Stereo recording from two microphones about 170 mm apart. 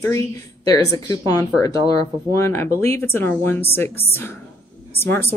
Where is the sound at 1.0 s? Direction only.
20° left (ahead or behind).